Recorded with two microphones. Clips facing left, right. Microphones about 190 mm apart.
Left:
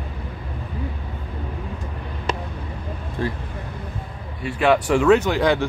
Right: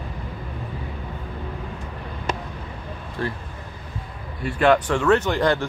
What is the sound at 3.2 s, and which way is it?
Speech, 20° left (ahead or behind).